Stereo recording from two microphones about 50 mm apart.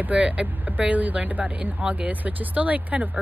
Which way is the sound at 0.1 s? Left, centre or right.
Right.